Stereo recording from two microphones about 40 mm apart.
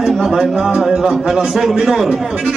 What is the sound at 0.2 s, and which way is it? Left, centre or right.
A man's voice, centre.